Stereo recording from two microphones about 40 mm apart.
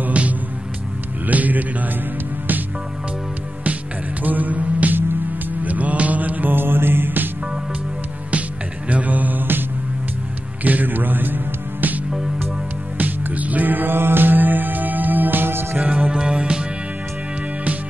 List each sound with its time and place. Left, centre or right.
0.1 s music: right
1.2 s speech: right
4.2 s music: right
5.6 s mantra: right
6.5 s mantra: right
8.3 s music: right
10.6 s music: right
15.8 s music: right
16.2 s music: right